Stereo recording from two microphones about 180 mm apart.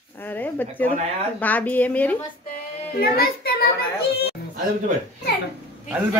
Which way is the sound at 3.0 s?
55° left (ahead or behind).